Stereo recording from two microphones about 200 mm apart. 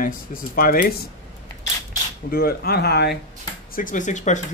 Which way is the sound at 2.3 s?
50° left (ahead or behind).